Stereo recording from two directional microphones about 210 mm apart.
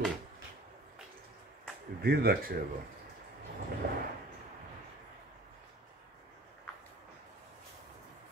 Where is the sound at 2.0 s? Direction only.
50° right (ahead or behind).